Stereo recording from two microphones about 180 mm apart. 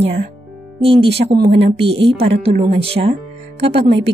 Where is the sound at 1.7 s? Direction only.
30° right (ahead or behind).